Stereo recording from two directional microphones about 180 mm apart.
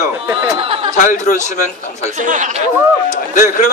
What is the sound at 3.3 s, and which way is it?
Speech, 50° left (ahead or behind).